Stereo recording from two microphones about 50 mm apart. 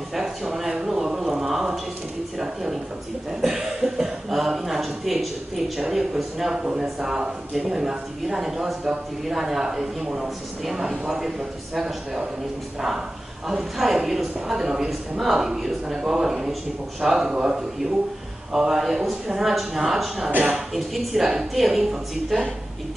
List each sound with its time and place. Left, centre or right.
0.1 s a sound: centre
3.3 s cough: centre
5.8 s a woman's voice: centre
6.5 s a man's voice: centre
13.5 s a man's voice: centre
20.2 s speech: right
20.7 s a woman's voice: centre